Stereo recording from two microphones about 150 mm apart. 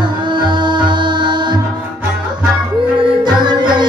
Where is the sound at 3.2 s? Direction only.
30° right (ahead or behind).